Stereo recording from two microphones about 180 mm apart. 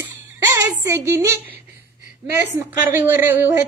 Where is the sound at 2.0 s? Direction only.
65° right (ahead or behind).